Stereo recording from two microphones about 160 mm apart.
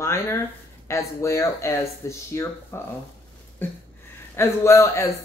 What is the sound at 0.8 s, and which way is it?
Speech, 20° left (ahead or behind).